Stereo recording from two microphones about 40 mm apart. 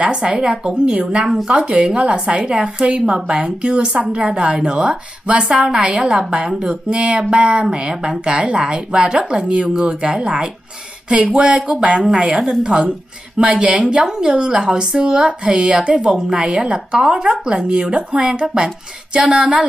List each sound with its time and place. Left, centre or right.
0.0 s a woman's voice: centre
1.6 s a woman's voice: right